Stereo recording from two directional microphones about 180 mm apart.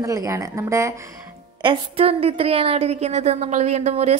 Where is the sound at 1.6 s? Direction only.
30° right (ahead or behind).